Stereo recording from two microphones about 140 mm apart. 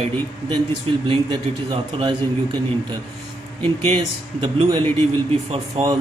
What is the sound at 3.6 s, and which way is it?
Speech, 45° right (ahead or behind).